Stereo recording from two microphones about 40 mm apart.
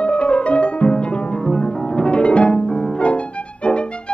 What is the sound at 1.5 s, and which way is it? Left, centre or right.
Pizzicato, left.